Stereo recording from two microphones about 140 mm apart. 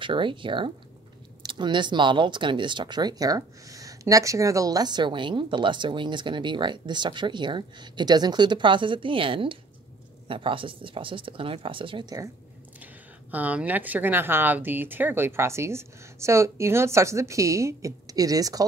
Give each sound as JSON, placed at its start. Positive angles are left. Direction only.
{"t": 0.0, "sound": "speech", "side_deg": -35}
{"t": 13.3, "sound": "speech", "side_deg": -10}